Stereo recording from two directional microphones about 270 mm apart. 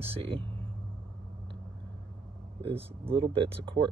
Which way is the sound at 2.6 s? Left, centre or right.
Right.